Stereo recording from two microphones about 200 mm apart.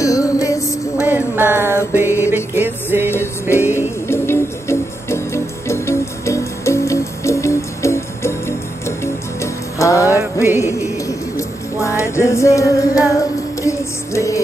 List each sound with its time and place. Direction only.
0.0 s music: 15° left (ahead or behind)
0.9 s a sound: 10° right (ahead or behind)
2.0 s music: 10° right (ahead or behind)
3.1 s music: 10° left (ahead or behind)